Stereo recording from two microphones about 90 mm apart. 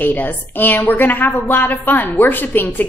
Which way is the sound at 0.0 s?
20° left (ahead or behind).